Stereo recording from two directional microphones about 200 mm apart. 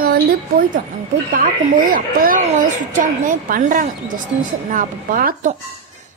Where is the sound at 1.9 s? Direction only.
45° right (ahead or behind).